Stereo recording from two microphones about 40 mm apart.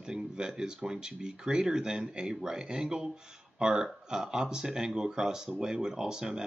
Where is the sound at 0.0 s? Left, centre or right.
Centre.